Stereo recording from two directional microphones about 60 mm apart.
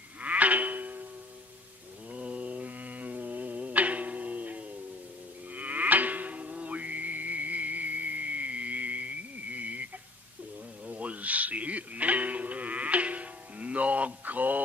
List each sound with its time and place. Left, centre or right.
0.2 s music: right
2.1 s music: right
5.5 s livestock: right
10.9 s sheep: right